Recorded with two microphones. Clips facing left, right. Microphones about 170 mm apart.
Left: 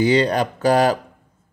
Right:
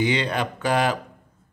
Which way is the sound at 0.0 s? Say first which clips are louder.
Left 6 dB; 35° left (ahead or behind).